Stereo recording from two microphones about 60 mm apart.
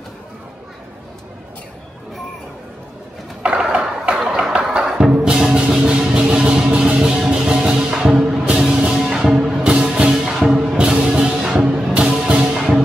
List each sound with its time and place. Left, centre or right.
3.4 s music: centre